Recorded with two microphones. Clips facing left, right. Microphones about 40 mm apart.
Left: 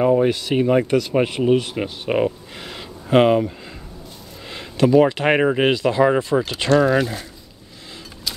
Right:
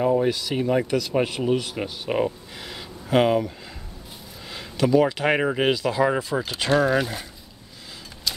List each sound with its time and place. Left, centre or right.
0.0 s speech: left
4.5 s a sound: centre
4.8 s speech: centre
5.1 s speech: left; by 7.2 s centre